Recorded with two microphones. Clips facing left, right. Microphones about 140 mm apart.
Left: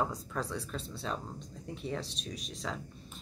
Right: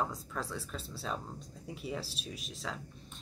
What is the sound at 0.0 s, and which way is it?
Speech, centre (ahead or behind).